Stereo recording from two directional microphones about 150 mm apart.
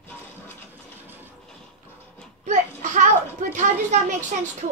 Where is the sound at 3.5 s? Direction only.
55° right (ahead or behind).